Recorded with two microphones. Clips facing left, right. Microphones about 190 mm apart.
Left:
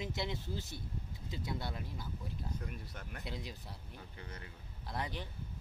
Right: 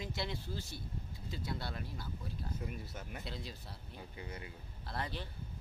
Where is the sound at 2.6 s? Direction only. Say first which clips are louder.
Right 2 dB; 5° right (ahead or behind).